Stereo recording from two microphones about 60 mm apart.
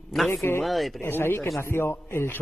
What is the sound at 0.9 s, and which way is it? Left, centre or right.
A man's voice, left.